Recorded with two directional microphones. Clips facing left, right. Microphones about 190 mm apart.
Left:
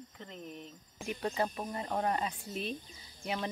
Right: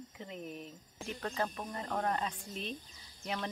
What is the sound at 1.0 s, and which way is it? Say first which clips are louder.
Speech: left 3 dB; 15° left (ahead or behind).